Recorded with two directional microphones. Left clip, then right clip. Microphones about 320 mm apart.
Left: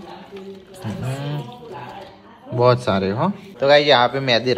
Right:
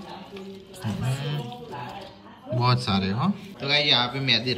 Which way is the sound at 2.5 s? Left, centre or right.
Centre.